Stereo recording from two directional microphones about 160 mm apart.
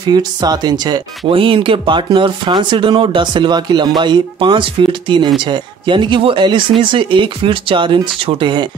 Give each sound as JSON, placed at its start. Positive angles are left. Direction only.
{"t": 0.0, "sound": "speech", "side_deg": -25}